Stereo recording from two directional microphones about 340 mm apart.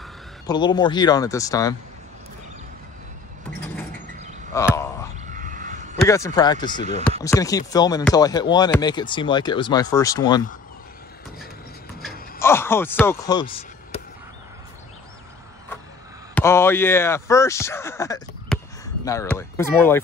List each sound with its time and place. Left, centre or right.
0.5 s speech: centre
4.5 s speech: centre
5.3 s a sound: right
6.0 s speech: centre
6.8 s speech: centre
7.1 s speech: centre
12.0 s a sound: centre
16.3 s speech: centre